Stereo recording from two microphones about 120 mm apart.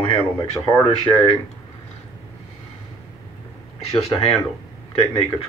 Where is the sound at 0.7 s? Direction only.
45° left (ahead or behind).